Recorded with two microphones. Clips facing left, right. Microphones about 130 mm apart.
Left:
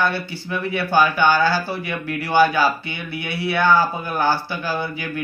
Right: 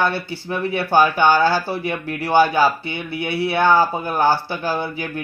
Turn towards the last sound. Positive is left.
turn(degrees=-25)  # may be behind; listen again after turning